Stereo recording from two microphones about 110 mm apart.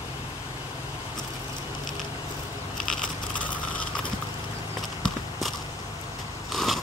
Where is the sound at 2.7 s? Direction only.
5° left (ahead or behind).